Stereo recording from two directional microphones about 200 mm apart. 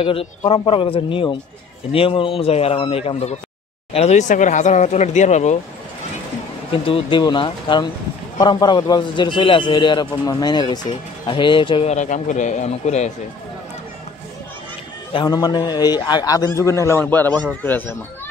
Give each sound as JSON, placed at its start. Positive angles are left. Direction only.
{"t": 0.0, "sound": "a man's voice", "side_deg": 30}
{"t": 6.7, "sound": "a man's voice", "side_deg": 25}
{"t": 15.1, "sound": "a man's voice", "side_deg": 20}